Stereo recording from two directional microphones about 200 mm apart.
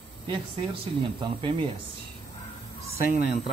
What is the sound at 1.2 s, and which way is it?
Speech, 25° right (ahead or behind).